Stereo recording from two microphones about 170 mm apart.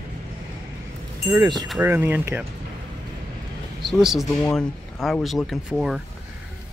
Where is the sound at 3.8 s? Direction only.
Centre (ahead or behind).